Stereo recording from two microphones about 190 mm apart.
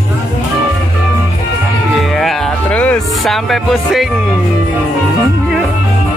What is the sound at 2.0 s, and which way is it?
Music, centre (ahead or behind).